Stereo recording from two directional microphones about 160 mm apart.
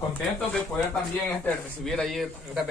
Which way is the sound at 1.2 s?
5° left (ahead or behind).